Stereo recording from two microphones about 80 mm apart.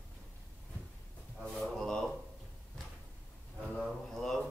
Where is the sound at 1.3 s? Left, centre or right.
Centre.